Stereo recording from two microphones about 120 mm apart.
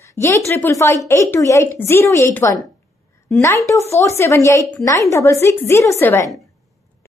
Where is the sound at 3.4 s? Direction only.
25° left (ahead or behind).